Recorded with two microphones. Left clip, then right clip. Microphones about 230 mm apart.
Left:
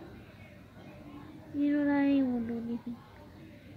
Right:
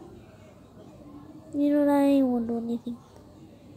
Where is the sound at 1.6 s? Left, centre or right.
Right.